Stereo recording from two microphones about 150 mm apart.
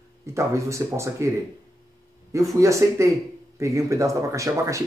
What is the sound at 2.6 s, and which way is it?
Speech, 20° right (ahead or behind).